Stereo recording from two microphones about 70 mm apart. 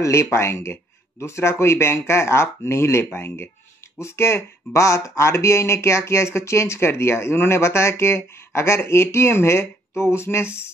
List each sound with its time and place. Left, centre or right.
0.0 s speech: left